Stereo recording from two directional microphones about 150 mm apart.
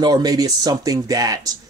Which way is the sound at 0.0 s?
25° right (ahead or behind).